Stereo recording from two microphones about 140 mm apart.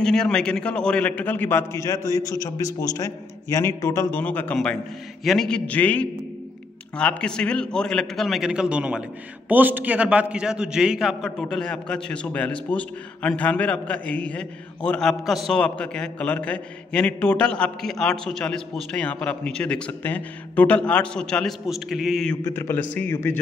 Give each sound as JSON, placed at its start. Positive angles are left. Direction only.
{"t": 0.0, "sound": "a man's voice", "side_deg": 5}
{"t": 22.4, "sound": "a man's voice", "side_deg": 15}